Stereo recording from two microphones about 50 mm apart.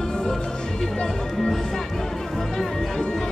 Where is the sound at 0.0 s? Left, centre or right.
Centre.